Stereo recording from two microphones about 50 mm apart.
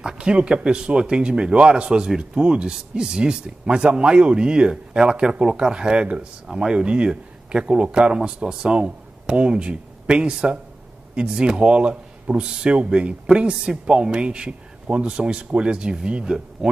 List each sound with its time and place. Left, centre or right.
0.0 s speech: centre
6.4 s speech: centre